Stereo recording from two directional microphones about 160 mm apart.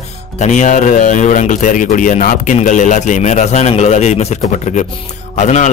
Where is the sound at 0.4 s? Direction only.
50° left (ahead or behind).